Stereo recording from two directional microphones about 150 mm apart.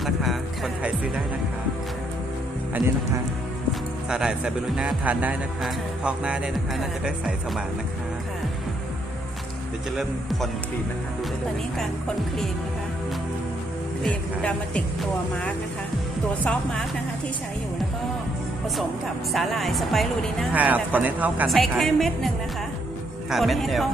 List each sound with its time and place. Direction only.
0.0 s music: centre (ahead or behind)
4.1 s speech: 5° right (ahead or behind)
14.0 s speech: 5° left (ahead or behind)
19.3 s speech: centre (ahead or behind)
20.5 s speech: 10° right (ahead or behind)
21.5 s speech: centre (ahead or behind)
23.3 s speech: centre (ahead or behind)